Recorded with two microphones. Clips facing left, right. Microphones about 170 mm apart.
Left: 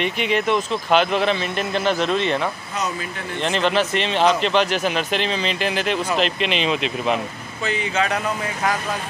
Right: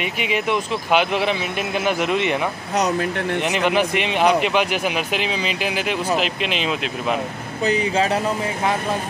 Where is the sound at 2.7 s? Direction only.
65° right (ahead or behind).